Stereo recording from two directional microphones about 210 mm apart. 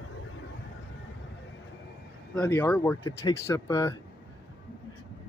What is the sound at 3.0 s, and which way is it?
Speech, 20° left (ahead or behind).